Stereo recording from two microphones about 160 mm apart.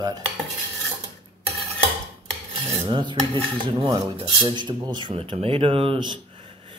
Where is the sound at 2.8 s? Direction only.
30° right (ahead or behind).